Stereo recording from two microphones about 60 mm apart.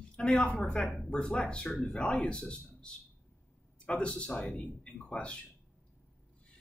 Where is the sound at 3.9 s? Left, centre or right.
Centre.